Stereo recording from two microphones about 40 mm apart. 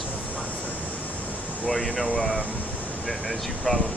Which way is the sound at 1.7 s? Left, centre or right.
Left.